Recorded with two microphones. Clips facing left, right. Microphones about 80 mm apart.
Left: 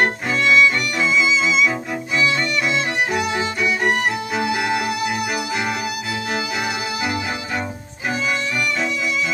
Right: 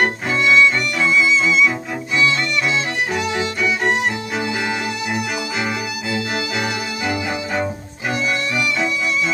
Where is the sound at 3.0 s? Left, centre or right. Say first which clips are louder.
Even; centre.